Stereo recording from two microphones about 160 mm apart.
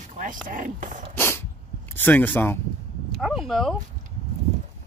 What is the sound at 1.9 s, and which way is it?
Speech, 10° left (ahead or behind).